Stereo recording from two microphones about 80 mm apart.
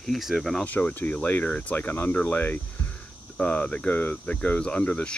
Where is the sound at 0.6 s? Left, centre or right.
Left.